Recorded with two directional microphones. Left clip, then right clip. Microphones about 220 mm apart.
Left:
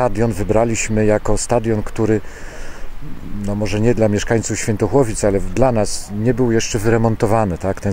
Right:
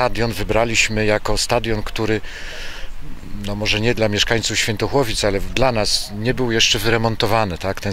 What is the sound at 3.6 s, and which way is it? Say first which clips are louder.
Speech: left 1 dB; 10° left (ahead or behind).